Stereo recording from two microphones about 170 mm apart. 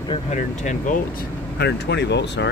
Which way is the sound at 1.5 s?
75° left (ahead or behind).